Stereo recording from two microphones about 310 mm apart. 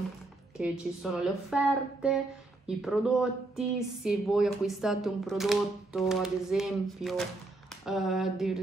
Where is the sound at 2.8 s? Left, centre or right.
Centre.